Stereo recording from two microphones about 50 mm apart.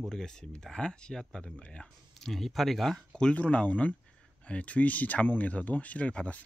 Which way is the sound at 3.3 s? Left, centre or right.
Left.